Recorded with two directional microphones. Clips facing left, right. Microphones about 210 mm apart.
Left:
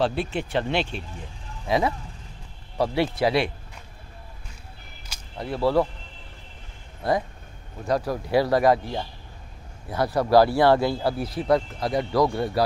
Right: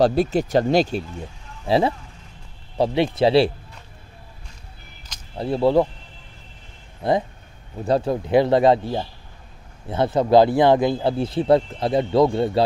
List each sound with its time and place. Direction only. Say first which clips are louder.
0.0 s speech: right 7 dB; 40° right (ahead or behind)
1.7 s speech: right 4 dB; 30° right (ahead or behind)
5.4 s speech: right 4 dB; 25° right (ahead or behind)
7.0 s speech: right 3 dB; 25° right (ahead or behind)